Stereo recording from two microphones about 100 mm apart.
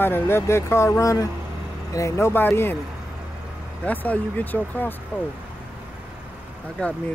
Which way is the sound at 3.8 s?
15° left (ahead or behind).